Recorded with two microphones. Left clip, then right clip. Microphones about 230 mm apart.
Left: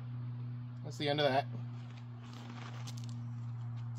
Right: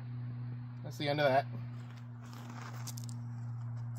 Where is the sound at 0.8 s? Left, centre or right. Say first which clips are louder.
Even; right.